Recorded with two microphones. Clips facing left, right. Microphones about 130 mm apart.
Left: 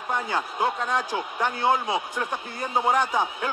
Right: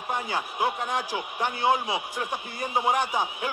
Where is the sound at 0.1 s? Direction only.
15° right (ahead or behind).